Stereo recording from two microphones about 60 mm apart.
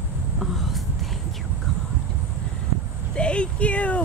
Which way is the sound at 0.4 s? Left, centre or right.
Centre.